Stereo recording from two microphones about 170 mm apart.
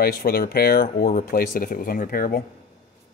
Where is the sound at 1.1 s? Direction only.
50° left (ahead or behind).